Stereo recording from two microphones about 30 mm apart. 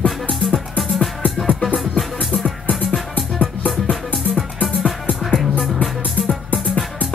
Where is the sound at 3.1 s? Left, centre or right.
Left.